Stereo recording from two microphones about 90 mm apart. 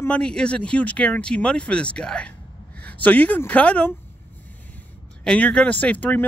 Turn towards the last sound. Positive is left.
turn(degrees=20)  # may be behind; listen again after turning